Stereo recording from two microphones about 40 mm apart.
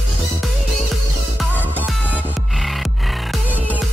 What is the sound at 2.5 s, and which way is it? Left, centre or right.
Music, centre.